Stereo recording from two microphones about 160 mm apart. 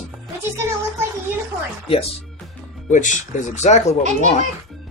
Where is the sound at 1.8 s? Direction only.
35° left (ahead or behind).